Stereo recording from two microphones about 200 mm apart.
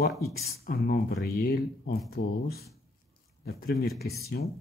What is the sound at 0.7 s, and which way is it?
Speech, 50° left (ahead or behind).